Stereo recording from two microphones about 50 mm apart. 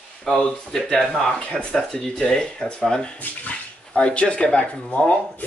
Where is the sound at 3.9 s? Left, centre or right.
Left.